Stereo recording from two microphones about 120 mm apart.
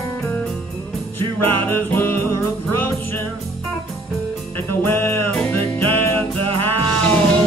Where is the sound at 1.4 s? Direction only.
15° left (ahead or behind).